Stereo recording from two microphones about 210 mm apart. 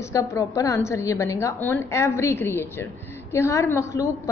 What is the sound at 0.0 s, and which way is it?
A woman's voice, 15° left (ahead or behind).